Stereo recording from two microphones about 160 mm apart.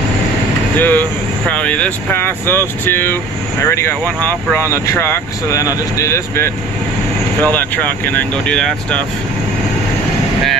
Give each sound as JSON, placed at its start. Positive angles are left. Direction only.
{"t": 0.7, "sound": "speech", "side_deg": 10}